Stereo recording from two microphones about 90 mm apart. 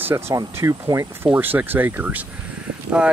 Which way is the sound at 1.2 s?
20° right (ahead or behind).